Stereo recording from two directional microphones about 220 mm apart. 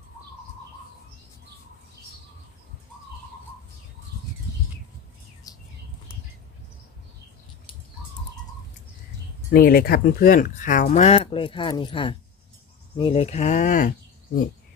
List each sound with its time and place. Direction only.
5.5 s bird: 15° left (ahead or behind)
9.5 s speech: 40° left (ahead or behind)